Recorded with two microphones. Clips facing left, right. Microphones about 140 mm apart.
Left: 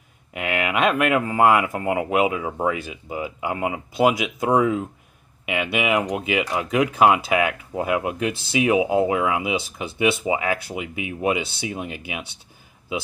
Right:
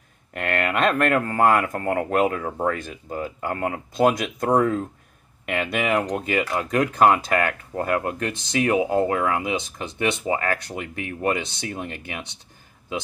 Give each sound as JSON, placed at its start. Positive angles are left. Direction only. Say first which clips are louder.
{"t": 0.3, "sound": "speech", "louder": "even", "side_deg": 5}